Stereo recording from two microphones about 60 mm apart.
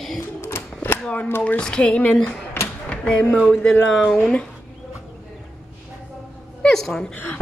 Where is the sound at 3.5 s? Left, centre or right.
Centre.